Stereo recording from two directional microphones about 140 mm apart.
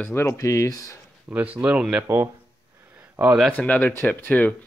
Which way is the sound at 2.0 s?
20° right (ahead or behind).